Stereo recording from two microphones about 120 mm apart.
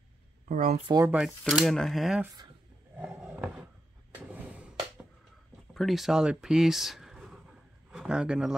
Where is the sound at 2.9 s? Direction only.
10° right (ahead or behind).